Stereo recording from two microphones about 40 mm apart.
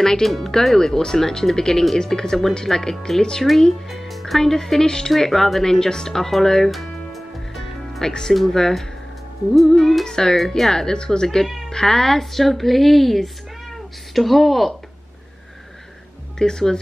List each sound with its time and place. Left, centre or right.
0.0 s speech: centre
3.9 s speech: centre
6.7 s music: centre
8.0 s speech: centre
9.6 s music: centre
10.0 s speech: centre
10.3 s speech: centre
11.4 s music: centre
11.7 s a woman's voice: centre
16.3 s speech: centre